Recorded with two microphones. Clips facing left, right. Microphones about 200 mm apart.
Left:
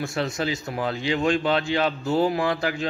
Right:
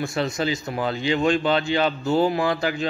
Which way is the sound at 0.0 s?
Centre (ahead or behind).